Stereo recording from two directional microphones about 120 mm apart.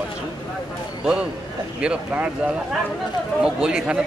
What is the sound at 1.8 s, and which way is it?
Speech, 10° right (ahead or behind).